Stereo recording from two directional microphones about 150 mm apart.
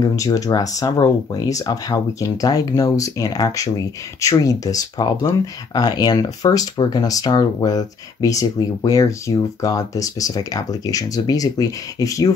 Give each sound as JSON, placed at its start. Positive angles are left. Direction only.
{"t": 0.0, "sound": "speech", "side_deg": 25}